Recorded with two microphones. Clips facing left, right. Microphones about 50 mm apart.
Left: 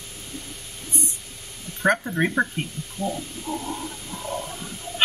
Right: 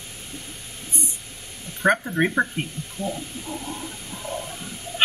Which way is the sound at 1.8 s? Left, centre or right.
Centre.